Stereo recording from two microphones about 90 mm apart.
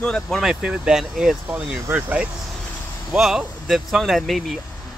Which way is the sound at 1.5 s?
20° right (ahead or behind).